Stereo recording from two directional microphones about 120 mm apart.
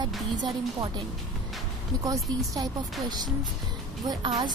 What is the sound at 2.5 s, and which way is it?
A woman's voice, 35° right (ahead or behind).